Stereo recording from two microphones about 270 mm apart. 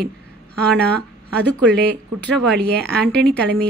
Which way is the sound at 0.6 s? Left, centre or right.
Right.